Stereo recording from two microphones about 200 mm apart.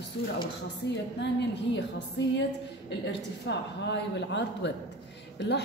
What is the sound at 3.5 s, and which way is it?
A woman's voice, 60° left (ahead or behind).